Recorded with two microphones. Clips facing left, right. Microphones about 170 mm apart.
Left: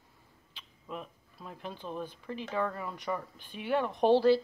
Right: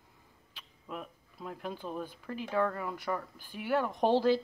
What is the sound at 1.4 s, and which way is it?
Speech, 10° right (ahead or behind).